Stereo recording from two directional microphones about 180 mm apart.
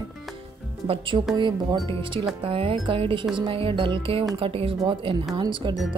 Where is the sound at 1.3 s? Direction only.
25° right (ahead or behind).